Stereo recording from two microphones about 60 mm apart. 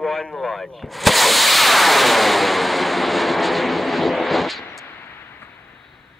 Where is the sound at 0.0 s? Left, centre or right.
Centre.